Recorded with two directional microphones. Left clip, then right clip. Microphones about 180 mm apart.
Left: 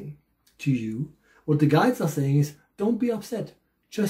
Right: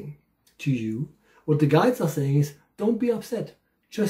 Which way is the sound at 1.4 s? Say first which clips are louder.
Right 1 dB; 15° left (ahead or behind).